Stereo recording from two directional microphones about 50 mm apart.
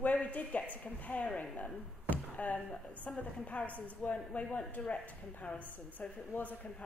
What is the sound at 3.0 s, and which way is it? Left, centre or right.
Speech, left.